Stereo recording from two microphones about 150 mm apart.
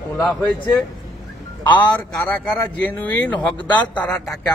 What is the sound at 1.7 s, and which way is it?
Speech, 30° left (ahead or behind).